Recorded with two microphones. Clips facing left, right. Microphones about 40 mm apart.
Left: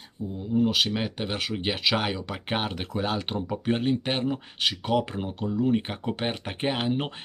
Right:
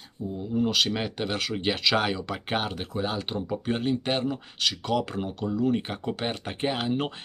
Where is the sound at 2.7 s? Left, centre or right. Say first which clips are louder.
Left 1 dB; left.